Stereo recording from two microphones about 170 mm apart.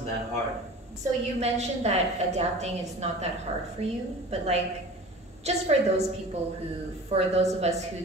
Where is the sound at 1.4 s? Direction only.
40° right (ahead or behind).